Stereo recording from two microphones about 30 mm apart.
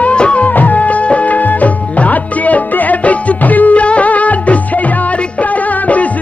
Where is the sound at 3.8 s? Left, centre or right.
Left.